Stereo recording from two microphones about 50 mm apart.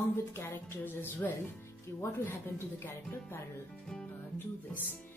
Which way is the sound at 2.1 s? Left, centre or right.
Left.